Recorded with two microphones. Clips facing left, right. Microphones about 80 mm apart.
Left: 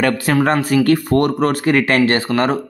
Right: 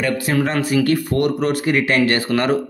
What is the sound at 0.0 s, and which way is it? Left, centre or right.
Speech, left.